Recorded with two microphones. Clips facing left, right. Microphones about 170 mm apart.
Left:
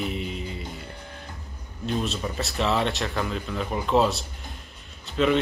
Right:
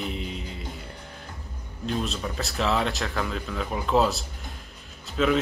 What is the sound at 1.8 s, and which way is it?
A man's voice, centre (ahead or behind).